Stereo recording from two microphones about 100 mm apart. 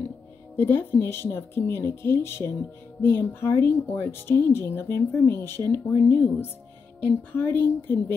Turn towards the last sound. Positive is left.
turn(degrees=20)  # may be behind; listen again after turning